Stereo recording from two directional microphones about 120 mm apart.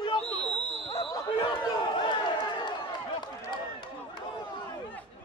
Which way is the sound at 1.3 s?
40° left (ahead or behind).